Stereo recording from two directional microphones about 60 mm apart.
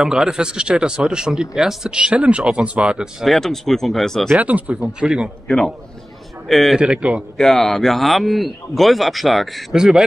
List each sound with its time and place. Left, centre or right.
0.0 s speech: centre
3.3 s a man's voice: centre
4.4 s speech: right
6.5 s a man's voice: centre
6.8 s speech: centre
7.3 s a man's voice: centre